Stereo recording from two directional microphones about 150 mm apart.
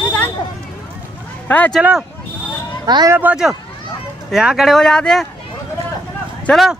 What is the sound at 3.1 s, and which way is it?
Speech, 10° right (ahead or behind).